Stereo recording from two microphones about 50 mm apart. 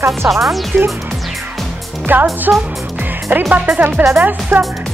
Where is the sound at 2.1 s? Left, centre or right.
Right.